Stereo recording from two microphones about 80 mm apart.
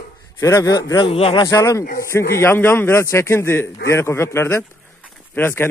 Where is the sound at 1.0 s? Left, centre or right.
Left.